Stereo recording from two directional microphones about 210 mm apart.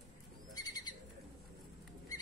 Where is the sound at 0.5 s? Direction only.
20° left (ahead or behind).